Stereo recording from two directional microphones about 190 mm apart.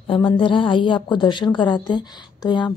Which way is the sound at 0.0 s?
25° left (ahead or behind).